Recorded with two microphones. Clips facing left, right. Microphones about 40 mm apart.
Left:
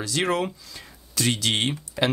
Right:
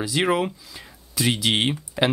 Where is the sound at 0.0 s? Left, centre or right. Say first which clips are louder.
Right 3 dB; centre.